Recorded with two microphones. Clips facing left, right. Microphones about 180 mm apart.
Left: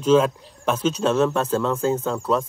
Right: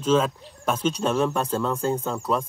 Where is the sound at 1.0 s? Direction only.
10° right (ahead or behind).